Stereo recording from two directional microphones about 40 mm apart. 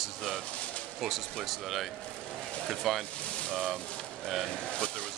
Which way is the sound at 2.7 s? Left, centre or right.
Centre.